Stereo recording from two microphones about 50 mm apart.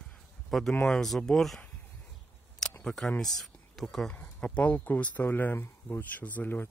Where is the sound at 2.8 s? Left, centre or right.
Centre.